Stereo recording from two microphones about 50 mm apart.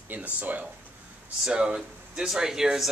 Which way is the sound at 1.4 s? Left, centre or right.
Centre.